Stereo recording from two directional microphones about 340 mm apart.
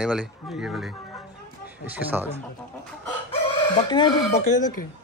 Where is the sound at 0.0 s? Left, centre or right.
Centre.